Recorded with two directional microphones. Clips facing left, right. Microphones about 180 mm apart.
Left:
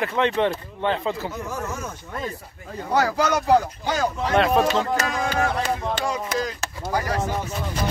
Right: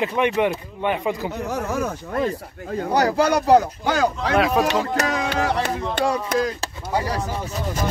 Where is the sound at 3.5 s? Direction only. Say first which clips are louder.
Right 3 dB; 65° right (ahead or behind).